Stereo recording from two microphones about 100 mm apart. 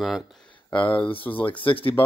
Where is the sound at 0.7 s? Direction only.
15° left (ahead or behind).